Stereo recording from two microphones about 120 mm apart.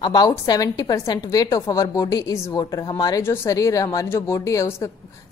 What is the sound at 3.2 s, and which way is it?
A woman's voice, 20° left (ahead or behind).